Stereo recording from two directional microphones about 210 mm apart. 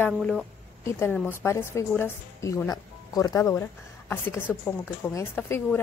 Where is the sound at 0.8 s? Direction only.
10° left (ahead or behind).